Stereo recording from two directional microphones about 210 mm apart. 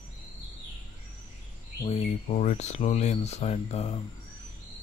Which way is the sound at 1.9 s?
30° left (ahead or behind).